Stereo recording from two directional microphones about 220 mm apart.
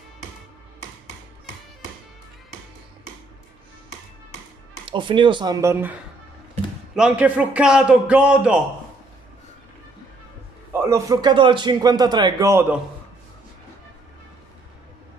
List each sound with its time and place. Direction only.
4.8 s speech: 20° right (ahead or behind)
7.0 s a man's voice: 5° right (ahead or behind)
10.7 s a man's voice: 10° right (ahead or behind)